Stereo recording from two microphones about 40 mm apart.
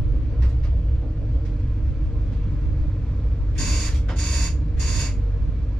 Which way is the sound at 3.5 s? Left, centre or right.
Centre.